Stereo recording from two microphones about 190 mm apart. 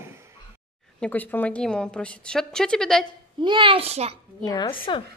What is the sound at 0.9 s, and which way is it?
A woman's voice, 5° left (ahead or behind).